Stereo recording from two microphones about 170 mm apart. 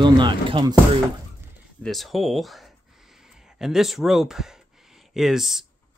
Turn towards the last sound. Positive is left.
turn(degrees=0)  # may be behind; listen again after turning